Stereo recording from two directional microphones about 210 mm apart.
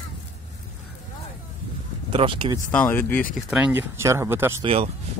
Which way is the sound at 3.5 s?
10° right (ahead or behind).